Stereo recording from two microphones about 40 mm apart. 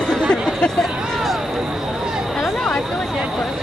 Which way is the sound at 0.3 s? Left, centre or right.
Left.